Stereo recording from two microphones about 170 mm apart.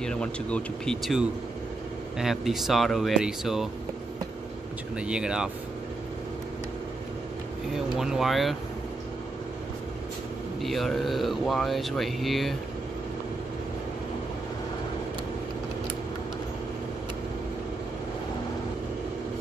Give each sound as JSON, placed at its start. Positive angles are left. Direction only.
{"t": 0.0, "sound": "speech", "side_deg": 5}
{"t": 4.9, "sound": "speech", "side_deg": -5}
{"t": 7.7, "sound": "speech", "side_deg": 0}
{"t": 10.6, "sound": "speech", "side_deg": 0}